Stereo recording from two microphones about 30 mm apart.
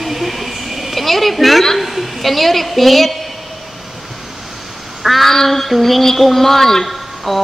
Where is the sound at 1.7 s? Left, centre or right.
Centre.